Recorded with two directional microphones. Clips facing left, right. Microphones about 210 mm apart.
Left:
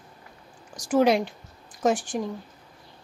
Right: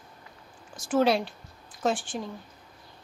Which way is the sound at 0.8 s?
15° left (ahead or behind).